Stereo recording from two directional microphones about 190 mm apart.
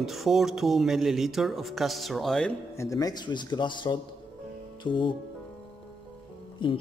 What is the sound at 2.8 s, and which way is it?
Speech, 20° left (ahead or behind).